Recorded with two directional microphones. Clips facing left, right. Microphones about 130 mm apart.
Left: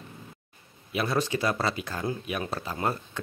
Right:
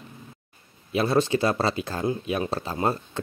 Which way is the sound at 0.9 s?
30° right (ahead or behind).